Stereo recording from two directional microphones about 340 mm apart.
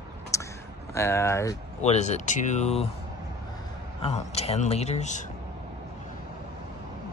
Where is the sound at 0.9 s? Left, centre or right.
Centre.